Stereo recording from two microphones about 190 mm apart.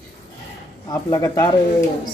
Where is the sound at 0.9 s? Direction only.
20° left (ahead or behind).